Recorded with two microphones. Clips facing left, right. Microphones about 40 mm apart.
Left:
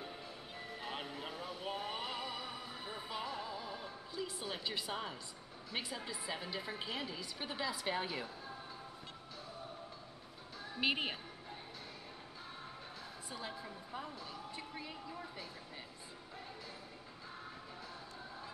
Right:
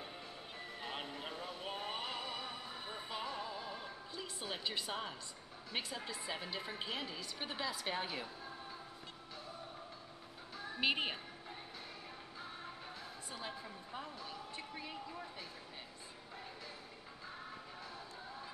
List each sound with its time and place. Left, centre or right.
0.6 s music: centre
5.7 s a woman's voice: centre
10.8 s a woman's voice: centre
13.3 s a woman's voice: centre